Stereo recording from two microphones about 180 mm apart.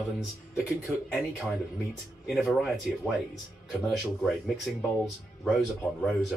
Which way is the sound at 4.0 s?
Centre (ahead or behind).